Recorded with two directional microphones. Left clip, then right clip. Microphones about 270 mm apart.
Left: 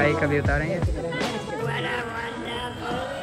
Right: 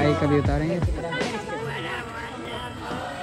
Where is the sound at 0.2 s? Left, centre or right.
Centre.